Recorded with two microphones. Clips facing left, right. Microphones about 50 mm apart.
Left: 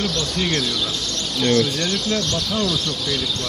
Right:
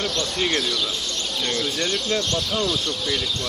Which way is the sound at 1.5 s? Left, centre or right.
Centre.